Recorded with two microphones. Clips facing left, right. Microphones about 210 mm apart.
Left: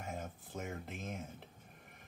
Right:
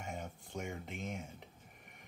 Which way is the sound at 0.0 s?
Centre (ahead or behind).